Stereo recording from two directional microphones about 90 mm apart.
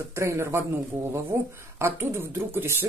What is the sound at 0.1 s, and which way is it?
Speech, 30° right (ahead or behind).